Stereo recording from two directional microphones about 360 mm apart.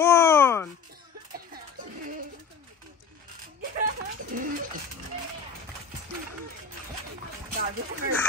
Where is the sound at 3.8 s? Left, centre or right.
Right.